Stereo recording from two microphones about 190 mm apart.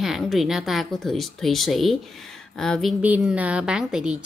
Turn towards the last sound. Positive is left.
turn(degrees=-5)  # may be behind; listen again after turning